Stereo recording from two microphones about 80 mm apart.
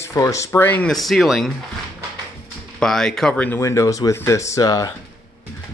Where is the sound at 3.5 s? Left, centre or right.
Left.